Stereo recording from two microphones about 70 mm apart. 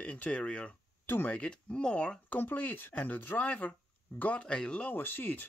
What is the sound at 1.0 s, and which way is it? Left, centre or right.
Speech, left.